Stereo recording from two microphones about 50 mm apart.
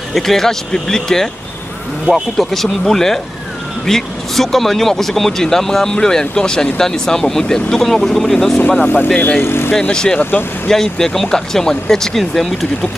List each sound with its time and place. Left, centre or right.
0.1 s speech: centre
8.8 s speech: left
9.4 s speech: left
9.8 s speech: centre